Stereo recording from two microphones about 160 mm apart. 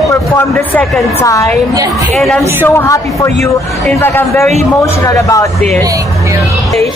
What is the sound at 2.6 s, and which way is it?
Speech, 15° left (ahead or behind).